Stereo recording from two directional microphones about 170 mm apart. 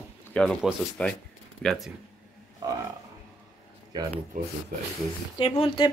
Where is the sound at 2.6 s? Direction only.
25° right (ahead or behind).